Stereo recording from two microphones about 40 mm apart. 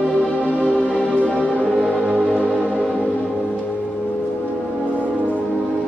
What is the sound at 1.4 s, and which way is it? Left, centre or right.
Music, right.